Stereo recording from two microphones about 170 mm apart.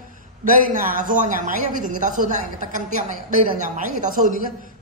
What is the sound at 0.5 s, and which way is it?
A woman's voice, 55° right (ahead or behind).